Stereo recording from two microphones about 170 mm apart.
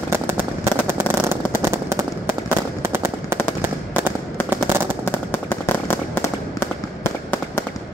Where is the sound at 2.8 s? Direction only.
15° right (ahead or behind).